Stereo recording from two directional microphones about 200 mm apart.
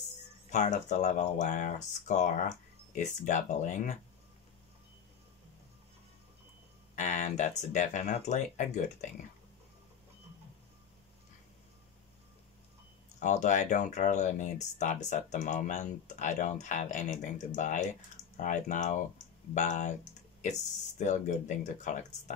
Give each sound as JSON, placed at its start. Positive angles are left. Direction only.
{"t": 0.5, "sound": "speech", "side_deg": 35}
{"t": 7.0, "sound": "speech", "side_deg": 40}
{"t": 13.2, "sound": "speech", "side_deg": 40}
{"t": 21.0, "sound": "speech", "side_deg": 35}